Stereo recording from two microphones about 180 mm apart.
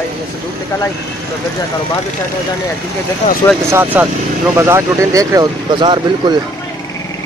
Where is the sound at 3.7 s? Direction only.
10° right (ahead or behind); by 6.3 s 25° right (ahead or behind).